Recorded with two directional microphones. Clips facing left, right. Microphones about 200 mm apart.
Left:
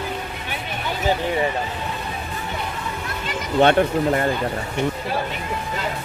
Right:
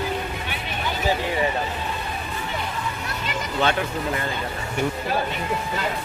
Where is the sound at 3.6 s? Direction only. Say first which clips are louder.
Left 8 dB; 55° left (ahead or behind).